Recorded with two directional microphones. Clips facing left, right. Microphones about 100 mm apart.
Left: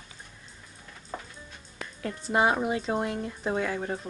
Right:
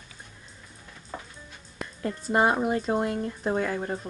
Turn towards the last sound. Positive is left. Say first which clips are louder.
# right 2 dB
turn(degrees=0)  # may be behind; listen again after turning